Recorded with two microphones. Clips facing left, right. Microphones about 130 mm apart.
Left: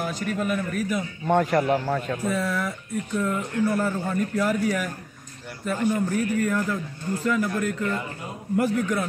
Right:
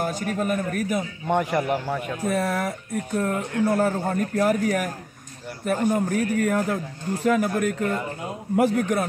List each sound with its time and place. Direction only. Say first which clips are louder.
0.0 s speech: right 2 dB; 45° right (ahead or behind)
1.2 s a man's voice: left 3 dB; 10° right (ahead or behind)
2.2 s a man's voice: right 5 dB; 55° right (ahead or behind)